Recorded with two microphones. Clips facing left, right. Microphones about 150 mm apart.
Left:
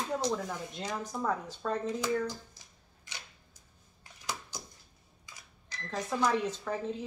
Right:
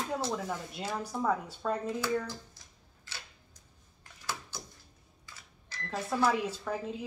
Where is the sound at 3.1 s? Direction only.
15° left (ahead or behind).